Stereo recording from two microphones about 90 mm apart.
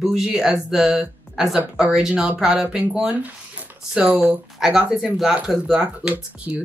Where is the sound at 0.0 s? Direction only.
5° right (ahead or behind).